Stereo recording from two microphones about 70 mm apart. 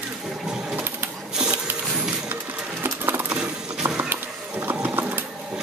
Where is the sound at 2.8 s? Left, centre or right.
Right.